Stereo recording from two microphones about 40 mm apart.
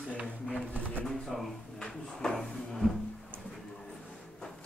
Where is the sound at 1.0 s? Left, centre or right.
Centre.